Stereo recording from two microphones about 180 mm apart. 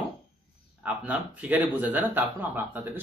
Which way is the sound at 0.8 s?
10° right (ahead or behind).